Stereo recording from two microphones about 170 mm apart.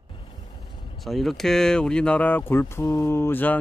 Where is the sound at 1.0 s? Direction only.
Centre (ahead or behind).